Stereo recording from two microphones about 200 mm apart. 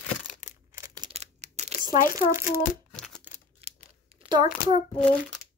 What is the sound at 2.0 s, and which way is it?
Speech, 15° right (ahead or behind).